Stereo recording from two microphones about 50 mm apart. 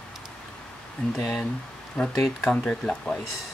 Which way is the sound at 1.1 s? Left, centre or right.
Centre.